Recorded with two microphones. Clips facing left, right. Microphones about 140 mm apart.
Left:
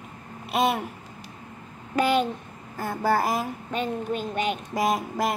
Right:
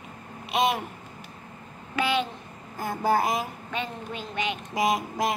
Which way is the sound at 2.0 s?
45° left (ahead or behind).